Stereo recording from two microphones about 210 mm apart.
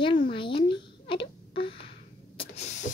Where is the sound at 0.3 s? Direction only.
25° left (ahead or behind).